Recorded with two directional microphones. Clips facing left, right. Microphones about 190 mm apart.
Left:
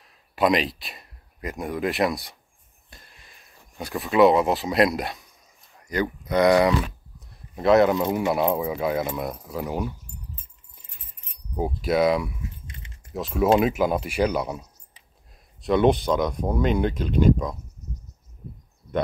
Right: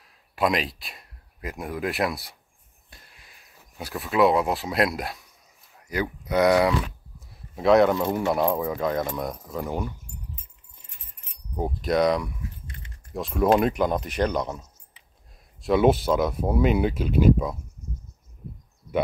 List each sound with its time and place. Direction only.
0.0 s speech: centre (ahead or behind)
11.5 s speech: 5° left (ahead or behind)
12.6 s keys jangling: 20° left (ahead or behind)
13.1 s speech: centre (ahead or behind)
15.6 s speech: 5° right (ahead or behind)